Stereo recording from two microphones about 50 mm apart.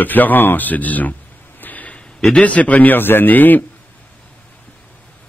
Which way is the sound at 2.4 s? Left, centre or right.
Left.